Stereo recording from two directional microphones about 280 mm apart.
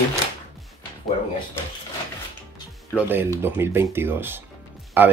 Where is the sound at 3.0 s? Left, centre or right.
Centre.